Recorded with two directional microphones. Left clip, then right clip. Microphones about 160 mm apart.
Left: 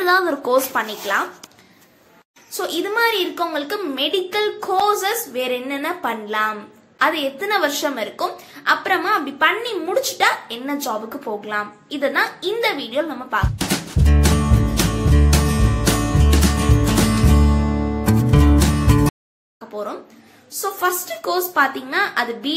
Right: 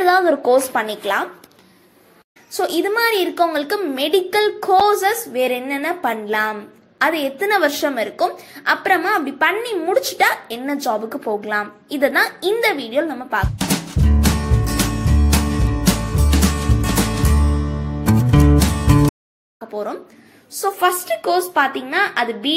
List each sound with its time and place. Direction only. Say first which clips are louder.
0.0 s a woman's voice: right 3 dB; 10° right (ahead or behind)
2.5 s a woman's voice: right 3 dB; 25° right (ahead or behind)
13.6 s music: right 1 dB; centre (ahead or behind)
19.7 s a woman's voice: right 2 dB; 20° right (ahead or behind)